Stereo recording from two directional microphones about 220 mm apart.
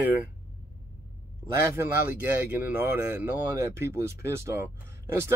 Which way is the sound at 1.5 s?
10° right (ahead or behind).